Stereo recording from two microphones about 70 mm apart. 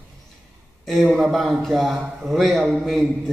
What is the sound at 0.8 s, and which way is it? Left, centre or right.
A man's voice, centre.